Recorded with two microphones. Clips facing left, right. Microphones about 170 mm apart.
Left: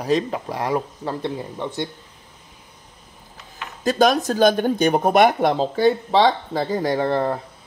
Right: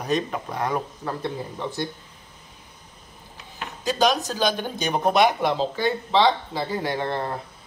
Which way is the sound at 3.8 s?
50° left (ahead or behind).